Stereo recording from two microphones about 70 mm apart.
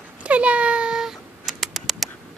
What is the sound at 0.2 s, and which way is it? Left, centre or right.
Cat, centre.